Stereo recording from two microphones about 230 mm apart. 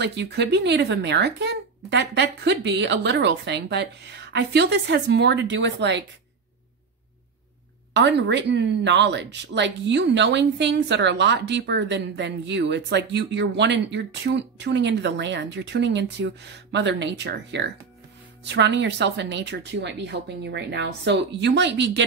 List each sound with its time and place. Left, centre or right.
0.0 s speech: right
7.9 s speech: right